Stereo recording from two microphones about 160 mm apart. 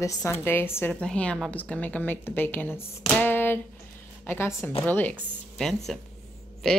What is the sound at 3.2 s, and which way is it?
Hands, 10° left (ahead or behind).